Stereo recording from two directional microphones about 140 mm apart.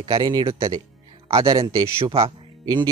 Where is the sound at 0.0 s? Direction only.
30° right (ahead or behind).